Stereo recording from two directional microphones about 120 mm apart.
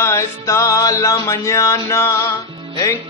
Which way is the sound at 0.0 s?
25° left (ahead or behind).